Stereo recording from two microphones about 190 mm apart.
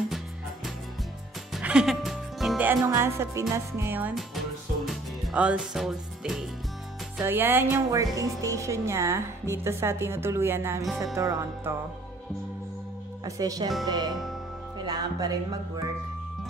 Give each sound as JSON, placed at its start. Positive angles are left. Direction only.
{"t": 1.5, "sound": "music", "side_deg": -5}
{"t": 2.9, "sound": "speech", "side_deg": -15}
{"t": 4.8, "sound": "music", "side_deg": -5}
{"t": 7.2, "sound": "speech", "side_deg": -10}
{"t": 13.2, "sound": "speech", "side_deg": -20}
{"t": 13.8, "sound": "music", "side_deg": -20}